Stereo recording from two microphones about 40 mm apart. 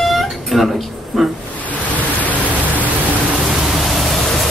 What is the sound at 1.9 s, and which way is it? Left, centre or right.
Pink noise, left.